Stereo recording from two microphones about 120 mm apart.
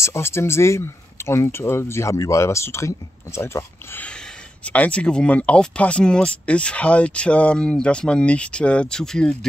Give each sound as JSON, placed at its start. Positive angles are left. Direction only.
{"t": 0.0, "sound": "speech", "side_deg": 20}